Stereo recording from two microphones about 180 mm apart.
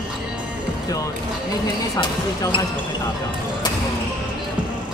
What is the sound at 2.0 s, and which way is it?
Speech, 25° left (ahead or behind).